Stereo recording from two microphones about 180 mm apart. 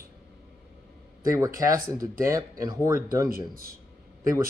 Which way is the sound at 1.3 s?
15° right (ahead or behind).